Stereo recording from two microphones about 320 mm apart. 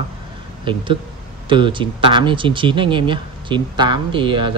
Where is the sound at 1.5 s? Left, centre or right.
Centre.